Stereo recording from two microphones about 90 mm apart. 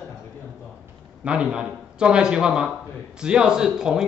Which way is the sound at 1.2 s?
10° right (ahead or behind).